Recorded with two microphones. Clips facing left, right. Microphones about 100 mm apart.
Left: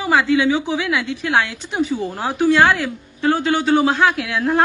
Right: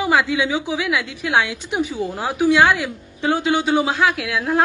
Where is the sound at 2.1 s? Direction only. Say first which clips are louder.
Right 1 dB; centre (ahead or behind).